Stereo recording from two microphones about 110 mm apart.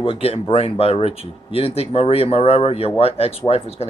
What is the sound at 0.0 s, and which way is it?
Speech, 60° left (ahead or behind).